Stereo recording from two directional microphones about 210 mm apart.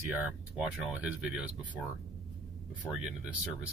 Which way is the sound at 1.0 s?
5° right (ahead or behind).